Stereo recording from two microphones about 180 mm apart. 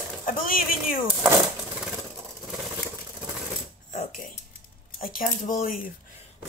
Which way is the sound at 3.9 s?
45° left (ahead or behind).